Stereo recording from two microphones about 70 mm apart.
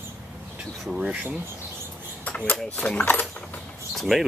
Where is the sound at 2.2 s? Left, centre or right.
Centre.